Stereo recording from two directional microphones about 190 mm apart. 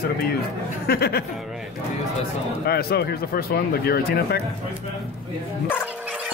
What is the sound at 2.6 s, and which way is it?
Speech, 55° left (ahead or behind).